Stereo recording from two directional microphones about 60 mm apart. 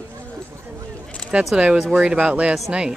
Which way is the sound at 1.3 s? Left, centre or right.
Right.